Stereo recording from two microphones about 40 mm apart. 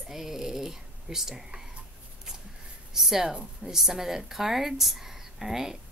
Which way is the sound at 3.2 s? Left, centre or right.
Right.